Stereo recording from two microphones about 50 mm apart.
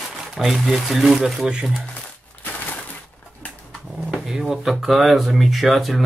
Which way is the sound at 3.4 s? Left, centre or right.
Left.